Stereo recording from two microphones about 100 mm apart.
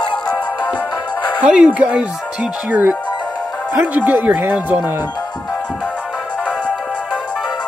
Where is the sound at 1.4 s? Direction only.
10° right (ahead or behind).